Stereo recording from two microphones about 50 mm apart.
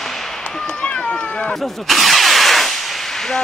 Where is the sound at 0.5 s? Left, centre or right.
Centre.